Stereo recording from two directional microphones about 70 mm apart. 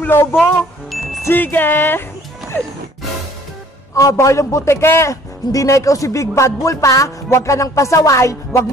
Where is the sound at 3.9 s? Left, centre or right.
Left.